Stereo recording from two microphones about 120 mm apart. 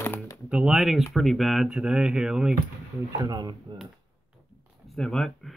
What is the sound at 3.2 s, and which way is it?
Speech, 35° right (ahead or behind).